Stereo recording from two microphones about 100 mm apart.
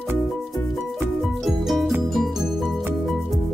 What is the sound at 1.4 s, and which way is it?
Music, centre (ahead or behind).